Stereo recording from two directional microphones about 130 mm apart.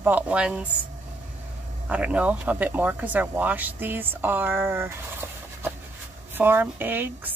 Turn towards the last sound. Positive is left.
turn(degrees=-15)  # may be behind; listen again after turning